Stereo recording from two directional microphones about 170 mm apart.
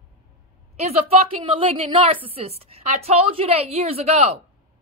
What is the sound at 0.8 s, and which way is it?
A woman's voice, 35° right (ahead or behind).